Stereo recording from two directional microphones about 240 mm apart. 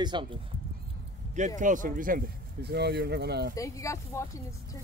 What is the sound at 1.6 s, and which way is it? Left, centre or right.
Speech, right.